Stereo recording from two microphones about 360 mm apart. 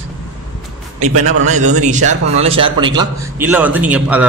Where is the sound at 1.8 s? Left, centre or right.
Centre.